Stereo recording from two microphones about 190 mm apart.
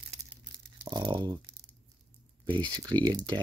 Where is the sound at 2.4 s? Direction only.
25° right (ahead or behind).